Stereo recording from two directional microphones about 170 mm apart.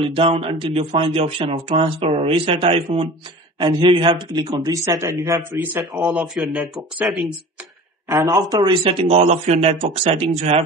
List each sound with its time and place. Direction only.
0.0 s speech: 35° right (ahead or behind); by 7.3 s 5° right (ahead or behind)
8.1 s speech: 20° right (ahead or behind); by 10.6 s 40° right (ahead or behind)